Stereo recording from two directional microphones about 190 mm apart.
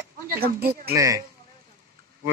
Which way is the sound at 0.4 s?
55° right (ahead or behind).